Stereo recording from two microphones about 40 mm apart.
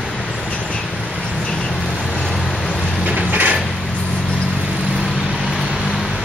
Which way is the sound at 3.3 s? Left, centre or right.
Right.